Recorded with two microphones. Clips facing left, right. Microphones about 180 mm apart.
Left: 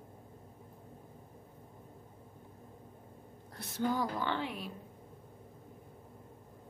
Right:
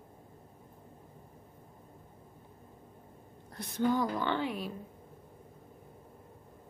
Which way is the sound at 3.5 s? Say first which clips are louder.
Right 4 dB; 5° left (ahead or behind).